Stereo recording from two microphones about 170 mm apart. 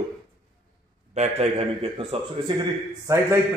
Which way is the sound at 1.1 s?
40° right (ahead or behind).